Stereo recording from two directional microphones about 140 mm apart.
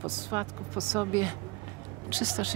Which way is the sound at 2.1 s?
20° right (ahead or behind).